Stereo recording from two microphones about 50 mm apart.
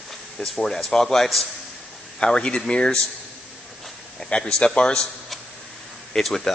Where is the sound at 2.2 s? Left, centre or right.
Centre.